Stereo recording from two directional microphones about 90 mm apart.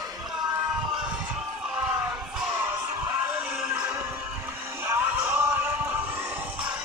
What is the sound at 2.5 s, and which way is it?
Music, 35° right (ahead or behind).